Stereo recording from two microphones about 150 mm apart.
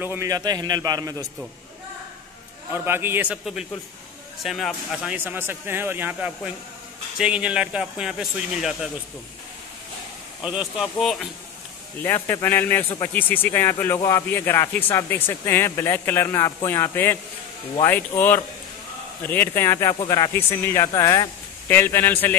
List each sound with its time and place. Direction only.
0.0 s a man's voice: 15° right (ahead or behind)
2.7 s speech: 15° right (ahead or behind)
10.4 s speech: 5° right (ahead or behind)
12.0 s speech: 15° left (ahead or behind)
19.2 s speech: 15° left (ahead or behind)